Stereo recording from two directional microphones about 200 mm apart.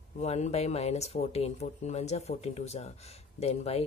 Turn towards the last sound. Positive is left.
turn(degrees=30)  # may be behind; listen again after turning